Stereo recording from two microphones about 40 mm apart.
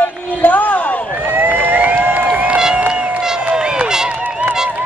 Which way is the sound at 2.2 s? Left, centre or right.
Right.